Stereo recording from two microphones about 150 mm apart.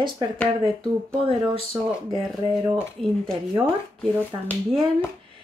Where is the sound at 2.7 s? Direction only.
Centre (ahead or behind).